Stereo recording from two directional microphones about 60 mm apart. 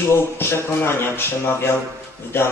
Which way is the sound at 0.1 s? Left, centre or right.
Left.